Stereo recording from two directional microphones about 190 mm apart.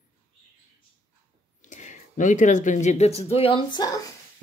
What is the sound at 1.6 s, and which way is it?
Speech, 40° left (ahead or behind).